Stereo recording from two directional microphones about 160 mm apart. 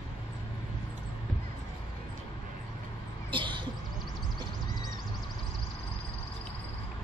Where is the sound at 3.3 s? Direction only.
30° right (ahead or behind).